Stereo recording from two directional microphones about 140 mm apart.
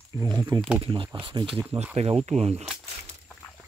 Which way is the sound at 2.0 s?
50° right (ahead or behind).